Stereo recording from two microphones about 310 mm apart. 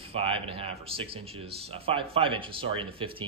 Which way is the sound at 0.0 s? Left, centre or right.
Centre.